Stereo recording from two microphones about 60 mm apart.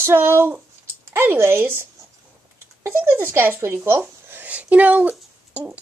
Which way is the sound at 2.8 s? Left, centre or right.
Right.